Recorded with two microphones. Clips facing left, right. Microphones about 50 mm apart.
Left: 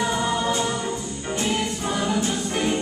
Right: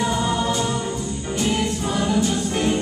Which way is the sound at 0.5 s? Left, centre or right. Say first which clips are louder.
Right 1 dB; left.